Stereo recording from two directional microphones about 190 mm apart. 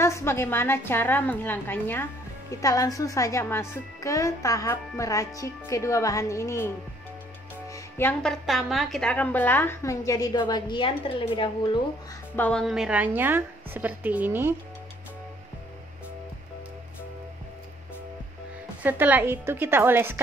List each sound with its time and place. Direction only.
0.0 s a woman's voice: 15° left (ahead or behind)
7.7 s a woman's voice: 10° left (ahead or behind); by 11.8 s 25° left (ahead or behind)
12.4 s a woman's voice: 5° left (ahead or behind)
18.8 s a woman's voice: 10° right (ahead or behind)